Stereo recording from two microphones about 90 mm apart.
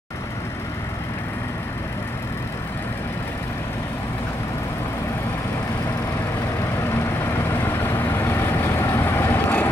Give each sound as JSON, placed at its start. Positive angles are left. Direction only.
{"t": 7.8, "sound": "vehicle", "side_deg": 25}